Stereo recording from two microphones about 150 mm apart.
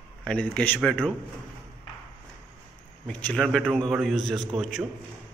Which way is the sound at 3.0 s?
5° left (ahead or behind).